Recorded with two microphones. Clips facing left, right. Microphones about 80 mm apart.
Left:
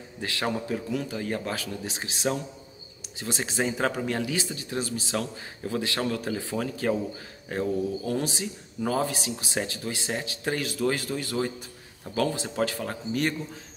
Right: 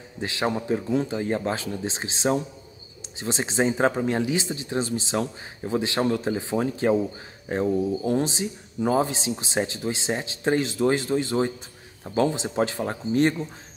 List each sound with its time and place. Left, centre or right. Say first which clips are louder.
0.2 s speech: right 3 dB; right